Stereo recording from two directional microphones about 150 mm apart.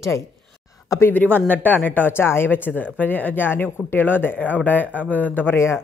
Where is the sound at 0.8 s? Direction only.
15° left (ahead or behind).